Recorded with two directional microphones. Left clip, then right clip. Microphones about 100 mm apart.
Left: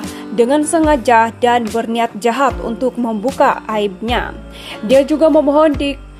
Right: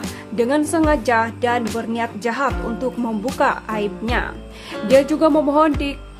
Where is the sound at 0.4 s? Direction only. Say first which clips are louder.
Left 5 dB; 40° left (ahead or behind).